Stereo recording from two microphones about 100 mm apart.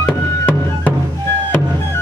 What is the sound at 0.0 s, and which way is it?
Music, 15° left (ahead or behind).